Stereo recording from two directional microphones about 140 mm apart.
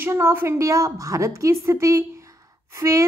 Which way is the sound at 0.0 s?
15° right (ahead or behind).